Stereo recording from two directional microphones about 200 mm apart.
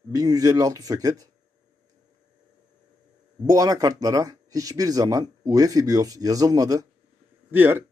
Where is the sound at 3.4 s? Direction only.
20° right (ahead or behind).